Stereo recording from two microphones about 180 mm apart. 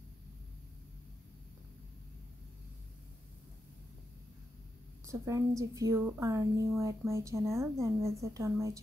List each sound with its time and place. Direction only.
5.0 s a woman's voice: 15° right (ahead or behind)